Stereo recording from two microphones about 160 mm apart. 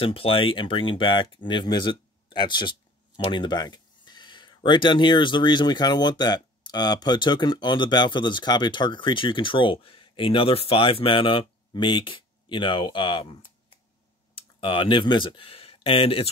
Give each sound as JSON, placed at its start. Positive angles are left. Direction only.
{"t": 0.0, "sound": "speech", "side_deg": 35}